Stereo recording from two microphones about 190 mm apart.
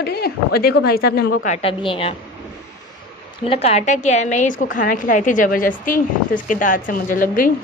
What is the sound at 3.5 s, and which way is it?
A woman's voice, 35° left (ahead or behind).